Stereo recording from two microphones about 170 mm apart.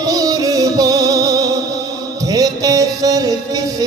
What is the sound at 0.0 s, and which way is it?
Music, 20° right (ahead or behind).